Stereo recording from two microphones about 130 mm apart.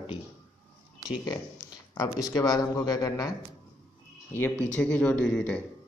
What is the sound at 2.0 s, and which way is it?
Speech, 30° left (ahead or behind).